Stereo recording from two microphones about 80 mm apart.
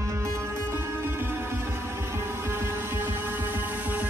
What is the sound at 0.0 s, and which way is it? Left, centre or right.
Music, right.